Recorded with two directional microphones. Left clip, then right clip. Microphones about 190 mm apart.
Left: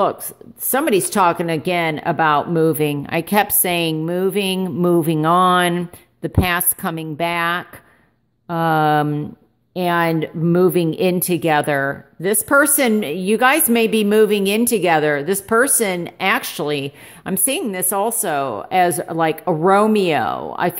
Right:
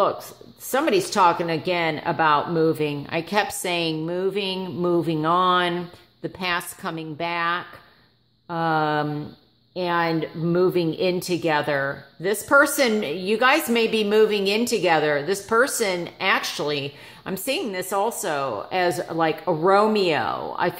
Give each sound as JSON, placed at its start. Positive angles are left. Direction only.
{"t": 0.7, "sound": "a woman's voice", "side_deg": 45}